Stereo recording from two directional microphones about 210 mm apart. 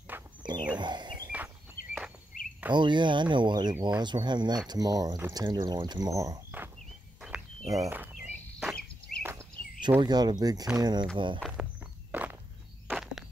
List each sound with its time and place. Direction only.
0.4 s a sound: 20° right (ahead or behind)
1.3 s walk: 5° right (ahead or behind)
2.7 s speech: 20° right (ahead or behind)
7.2 s a sound: 5° right (ahead or behind)
7.8 s insect: 10° right (ahead or behind)
9.3 s a sound: 20° right (ahead or behind)
10.8 s speech: 20° right (ahead or behind)
11.3 s speech: centre (ahead or behind)
12.1 s walk: 10° right (ahead or behind)